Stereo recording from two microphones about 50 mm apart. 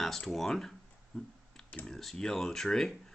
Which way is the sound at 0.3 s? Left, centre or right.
Centre.